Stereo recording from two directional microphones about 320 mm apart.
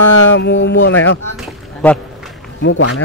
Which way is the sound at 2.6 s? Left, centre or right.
Left.